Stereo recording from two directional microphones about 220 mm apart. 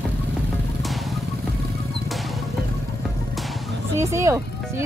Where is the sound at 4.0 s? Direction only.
15° right (ahead or behind).